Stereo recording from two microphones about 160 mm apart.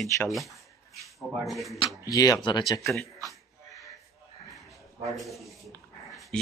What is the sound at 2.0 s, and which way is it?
Speech, 20° left (ahead or behind).